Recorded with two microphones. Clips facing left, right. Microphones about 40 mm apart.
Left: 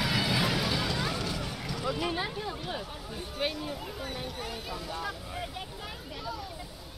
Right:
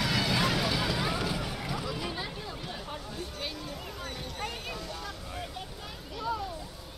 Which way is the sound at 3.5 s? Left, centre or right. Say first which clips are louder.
Left 3 dB; centre.